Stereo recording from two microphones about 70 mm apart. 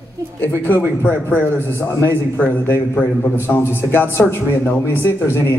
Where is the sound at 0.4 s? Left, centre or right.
Left.